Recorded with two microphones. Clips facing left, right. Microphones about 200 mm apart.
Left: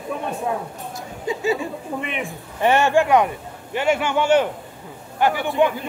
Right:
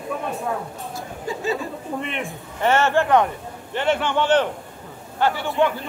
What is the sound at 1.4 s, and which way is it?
Speech, 15° left (ahead or behind).